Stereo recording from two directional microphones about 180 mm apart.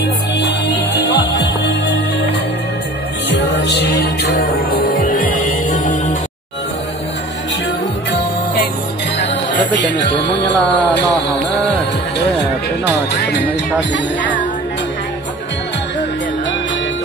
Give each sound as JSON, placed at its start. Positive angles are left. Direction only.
{"t": 0.4, "sound": "music", "side_deg": 75}
{"t": 3.3, "sound": "music", "side_deg": 75}
{"t": 9.8, "sound": "music", "side_deg": 75}
{"t": 13.1, "sound": "music", "side_deg": 70}
{"t": 13.9, "sound": "music", "side_deg": 90}